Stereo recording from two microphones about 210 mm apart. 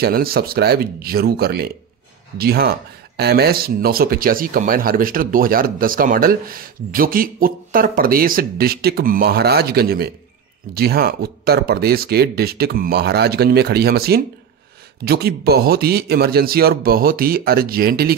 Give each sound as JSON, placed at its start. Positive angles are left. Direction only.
{"t": 0.0, "sound": "speech", "side_deg": -45}